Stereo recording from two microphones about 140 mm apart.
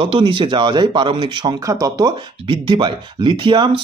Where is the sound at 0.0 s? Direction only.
40° right (ahead or behind).